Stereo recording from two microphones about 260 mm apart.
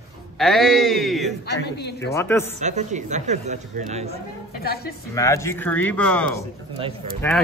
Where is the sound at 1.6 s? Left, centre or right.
Left.